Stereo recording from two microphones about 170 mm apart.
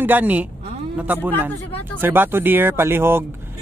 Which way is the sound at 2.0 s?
10° right (ahead or behind).